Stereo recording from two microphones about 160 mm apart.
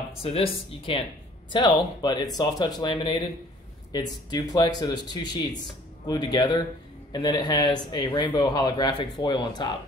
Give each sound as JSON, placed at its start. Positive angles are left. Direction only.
{"t": 0.2, "sound": "speech", "side_deg": 35}